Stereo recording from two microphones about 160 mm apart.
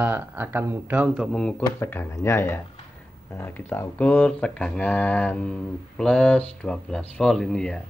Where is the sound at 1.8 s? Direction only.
15° left (ahead or behind).